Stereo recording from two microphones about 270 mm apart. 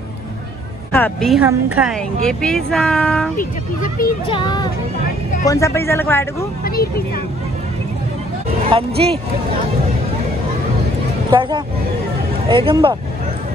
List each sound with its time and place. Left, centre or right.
0.9 s a woman's voice: centre
3.3 s speech: left
4.3 s speech: centre
6.6 s speech: left
8.6 s speech: right
11.2 s speech: centre